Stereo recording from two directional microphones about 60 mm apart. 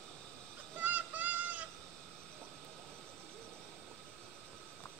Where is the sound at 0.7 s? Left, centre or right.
Right.